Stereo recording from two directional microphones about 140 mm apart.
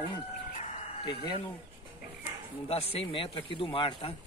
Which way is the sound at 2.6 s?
45° left (ahead or behind).